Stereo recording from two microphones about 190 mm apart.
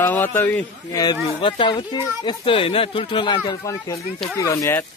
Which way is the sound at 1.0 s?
25° left (ahead or behind).